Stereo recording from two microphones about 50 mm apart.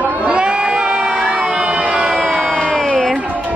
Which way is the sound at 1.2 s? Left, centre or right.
Right.